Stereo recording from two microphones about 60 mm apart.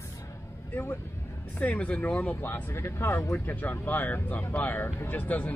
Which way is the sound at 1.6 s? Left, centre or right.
Left.